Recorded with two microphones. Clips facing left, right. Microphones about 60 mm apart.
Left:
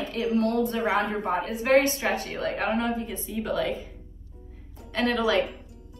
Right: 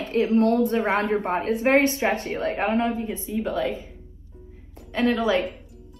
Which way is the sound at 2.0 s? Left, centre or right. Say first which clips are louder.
Right 4 dB; right.